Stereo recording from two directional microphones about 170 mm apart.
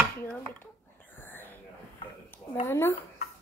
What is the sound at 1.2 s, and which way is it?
Whispering, 10° left (ahead or behind).